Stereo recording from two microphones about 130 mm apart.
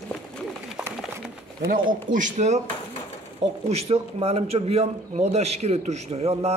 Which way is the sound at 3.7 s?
50° right (ahead or behind).